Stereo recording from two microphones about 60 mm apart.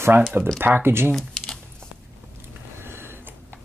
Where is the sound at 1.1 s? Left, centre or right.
Centre.